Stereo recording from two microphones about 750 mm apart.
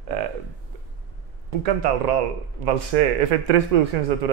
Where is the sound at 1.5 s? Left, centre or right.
Right.